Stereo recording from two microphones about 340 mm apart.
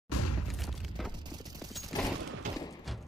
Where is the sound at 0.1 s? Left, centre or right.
Left.